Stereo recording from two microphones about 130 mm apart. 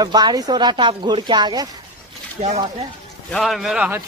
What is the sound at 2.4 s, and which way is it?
Speech, 50° right (ahead or behind).